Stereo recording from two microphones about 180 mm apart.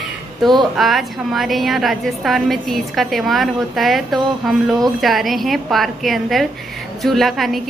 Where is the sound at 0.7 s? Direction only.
Centre (ahead or behind).